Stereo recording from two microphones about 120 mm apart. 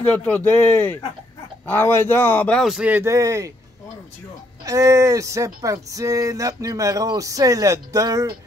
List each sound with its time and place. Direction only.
0.1 s speech: 15° left (ahead or behind)
2.6 s speech: 5° right (ahead or behind)
2.9 s speech: 25° right (ahead or behind)
4.6 s speech: 25° right (ahead or behind)